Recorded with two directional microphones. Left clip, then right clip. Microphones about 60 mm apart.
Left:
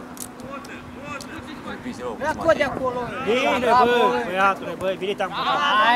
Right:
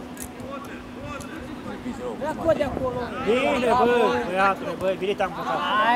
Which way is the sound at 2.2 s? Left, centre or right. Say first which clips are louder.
Left 3 dB; right.